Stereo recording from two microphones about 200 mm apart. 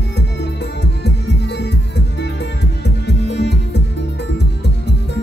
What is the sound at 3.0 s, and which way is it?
Music, 60° left (ahead or behind).